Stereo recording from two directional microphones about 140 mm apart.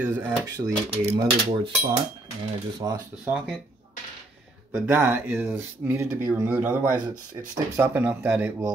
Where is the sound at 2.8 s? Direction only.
30° right (ahead or behind).